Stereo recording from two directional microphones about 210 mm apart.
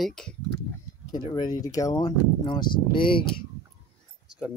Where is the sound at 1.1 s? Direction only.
20° left (ahead or behind).